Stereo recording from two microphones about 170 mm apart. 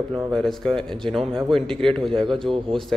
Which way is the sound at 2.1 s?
30° right (ahead or behind).